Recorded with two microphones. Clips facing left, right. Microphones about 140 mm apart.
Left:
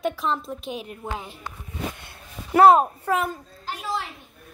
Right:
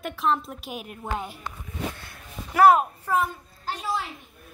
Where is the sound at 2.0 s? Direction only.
25° left (ahead or behind).